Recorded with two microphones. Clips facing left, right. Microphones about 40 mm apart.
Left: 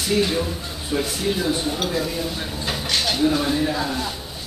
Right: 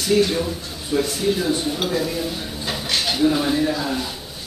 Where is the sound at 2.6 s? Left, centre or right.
Centre.